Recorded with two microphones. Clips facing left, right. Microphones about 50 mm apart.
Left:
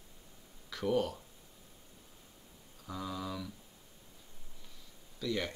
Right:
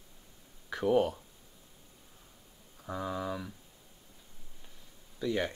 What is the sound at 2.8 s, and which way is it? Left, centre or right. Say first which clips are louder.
Speech: right 5 dB; right.